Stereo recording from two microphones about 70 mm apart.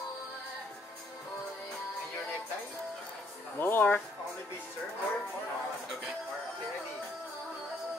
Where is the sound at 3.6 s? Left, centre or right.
Left.